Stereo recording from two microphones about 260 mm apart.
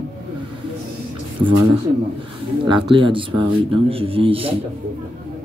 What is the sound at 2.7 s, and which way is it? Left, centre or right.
Speech, centre.